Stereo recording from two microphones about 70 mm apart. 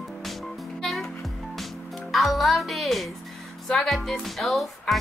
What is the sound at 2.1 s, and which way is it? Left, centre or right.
Speech, centre.